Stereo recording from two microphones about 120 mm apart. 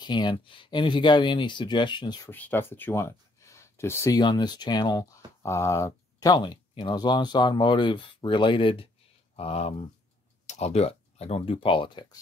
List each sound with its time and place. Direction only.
0.0 s speech: 40° left (ahead or behind)
2.2 s speech: 15° left (ahead or behind)
4.2 s speech: 40° left (ahead or behind); by 9.8 s 55° left (ahead or behind)
10.4 s speech: 65° left (ahead or behind); by 12.2 s 40° left (ahead or behind)